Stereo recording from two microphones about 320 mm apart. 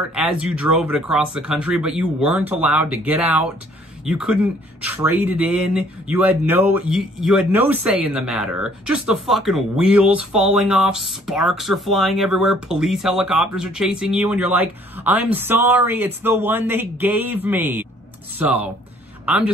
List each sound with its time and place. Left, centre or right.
0.1 s speech: centre